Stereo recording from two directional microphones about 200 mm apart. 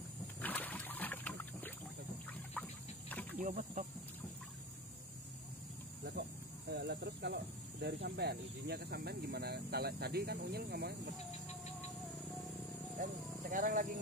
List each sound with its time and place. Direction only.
0.4 s wild animals: 10° left (ahead or behind)
3.1 s insect: 10° left (ahead or behind)
3.3 s speech: 40° right (ahead or behind)
6.7 s speech: 60° right (ahead or behind)
13.0 s speech: 40° right (ahead or behind)